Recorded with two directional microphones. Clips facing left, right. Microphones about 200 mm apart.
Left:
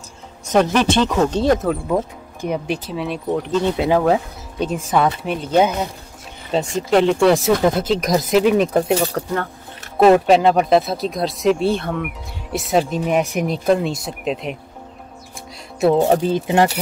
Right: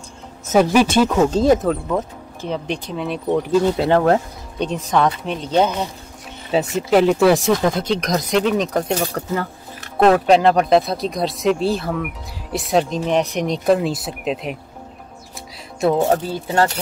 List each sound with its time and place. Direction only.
0.5 s speech: 5° right (ahead or behind)
2.4 s speech: 10° left (ahead or behind)
6.5 s speech: 5° right (ahead or behind)
16.0 s speech: 20° left (ahead or behind)